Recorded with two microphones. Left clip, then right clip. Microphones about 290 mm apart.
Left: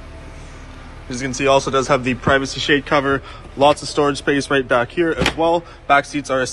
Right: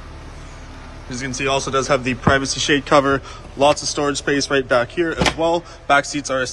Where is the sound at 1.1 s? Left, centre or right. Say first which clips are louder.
Left 5 dB; centre.